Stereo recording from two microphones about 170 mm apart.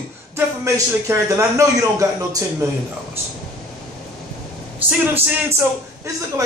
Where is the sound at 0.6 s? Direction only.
20° right (ahead or behind).